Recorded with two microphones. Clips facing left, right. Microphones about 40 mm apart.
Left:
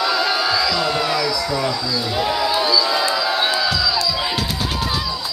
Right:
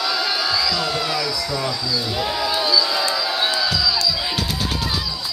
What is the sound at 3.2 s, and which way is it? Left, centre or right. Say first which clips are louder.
Music: left 2 dB; centre.